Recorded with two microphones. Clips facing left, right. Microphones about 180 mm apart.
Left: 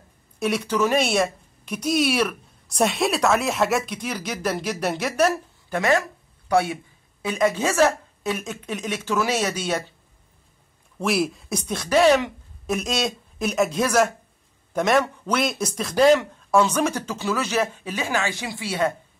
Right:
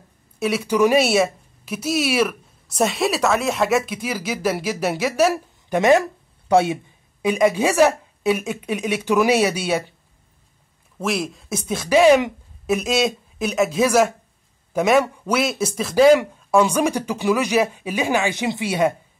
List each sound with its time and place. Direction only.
0.4 s a woman's voice: 5° right (ahead or behind)
5.7 s a man's voice: 20° right (ahead or behind)
11.0 s a man's voice: centre (ahead or behind); by 18.9 s 15° right (ahead or behind)